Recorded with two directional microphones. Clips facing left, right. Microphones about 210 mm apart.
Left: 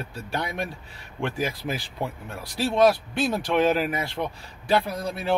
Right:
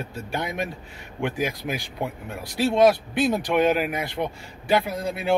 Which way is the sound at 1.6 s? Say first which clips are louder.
Right 1 dB; 5° right (ahead or behind).